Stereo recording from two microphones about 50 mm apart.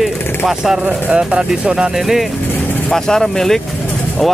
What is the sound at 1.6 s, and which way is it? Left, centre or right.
Speech, right.